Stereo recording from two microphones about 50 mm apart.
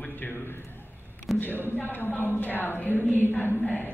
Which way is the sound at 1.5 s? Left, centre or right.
Right.